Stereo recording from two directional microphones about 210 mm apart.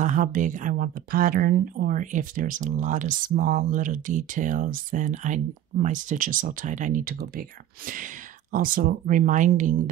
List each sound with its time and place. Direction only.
0.0 s speech: 35° right (ahead or behind)